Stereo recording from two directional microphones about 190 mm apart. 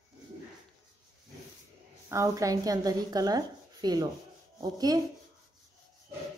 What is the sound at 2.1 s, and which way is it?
A woman's voice, 15° right (ahead or behind).